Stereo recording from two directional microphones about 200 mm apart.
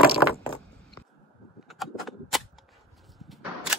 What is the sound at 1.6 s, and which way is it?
Cap gun, centre (ahead or behind).